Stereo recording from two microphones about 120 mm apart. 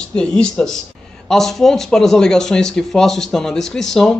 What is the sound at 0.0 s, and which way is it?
Speech, 5° left (ahead or behind).